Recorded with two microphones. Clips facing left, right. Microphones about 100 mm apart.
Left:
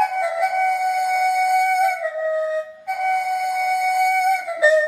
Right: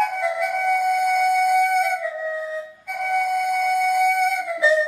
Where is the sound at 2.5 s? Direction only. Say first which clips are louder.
Left 6 dB; centre (ahead or behind).